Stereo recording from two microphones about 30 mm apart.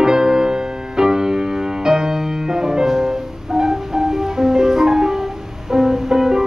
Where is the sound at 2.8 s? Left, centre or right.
Centre.